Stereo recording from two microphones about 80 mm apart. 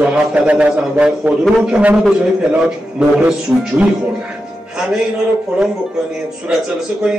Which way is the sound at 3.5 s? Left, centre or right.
Centre.